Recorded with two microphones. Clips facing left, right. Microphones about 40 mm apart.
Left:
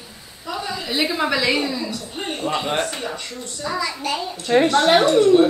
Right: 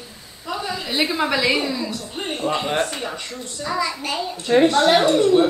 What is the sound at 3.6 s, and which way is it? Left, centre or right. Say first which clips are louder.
Speech: right 1 dB; centre.